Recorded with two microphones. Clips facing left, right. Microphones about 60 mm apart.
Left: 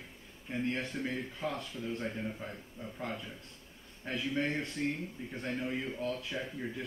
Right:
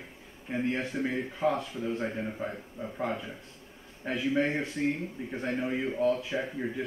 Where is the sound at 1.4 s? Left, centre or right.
Right.